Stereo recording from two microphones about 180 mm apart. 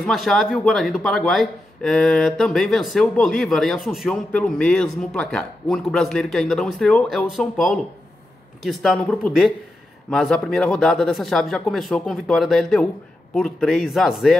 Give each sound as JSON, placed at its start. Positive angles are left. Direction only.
{"t": 0.0, "sound": "speech", "side_deg": 0}